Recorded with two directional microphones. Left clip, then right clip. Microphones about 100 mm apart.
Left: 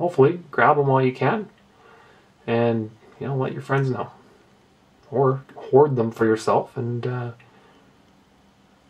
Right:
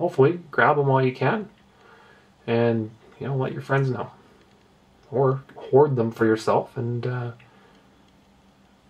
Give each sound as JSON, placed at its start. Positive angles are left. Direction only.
{"t": 0.0, "sound": "speech", "side_deg": 5}
{"t": 2.4, "sound": "speech", "side_deg": 5}
{"t": 3.5, "sound": "speech", "side_deg": 0}
{"t": 5.2, "sound": "speech", "side_deg": 15}
{"t": 5.9, "sound": "speech", "side_deg": 5}
{"t": 6.7, "sound": "speech", "side_deg": 25}
{"t": 7.1, "sound": "speech", "side_deg": 15}